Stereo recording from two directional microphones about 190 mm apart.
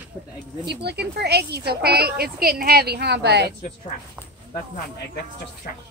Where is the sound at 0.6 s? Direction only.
60° right (ahead or behind).